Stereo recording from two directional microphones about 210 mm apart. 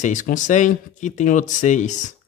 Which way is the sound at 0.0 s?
35° left (ahead or behind).